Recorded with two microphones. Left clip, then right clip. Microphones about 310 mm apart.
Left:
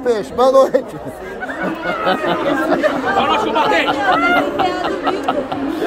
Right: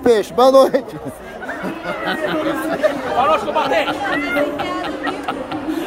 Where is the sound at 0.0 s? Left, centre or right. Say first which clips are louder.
Right 2 dB; centre.